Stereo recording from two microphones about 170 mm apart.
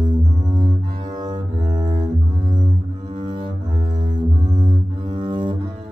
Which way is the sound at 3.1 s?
30° right (ahead or behind).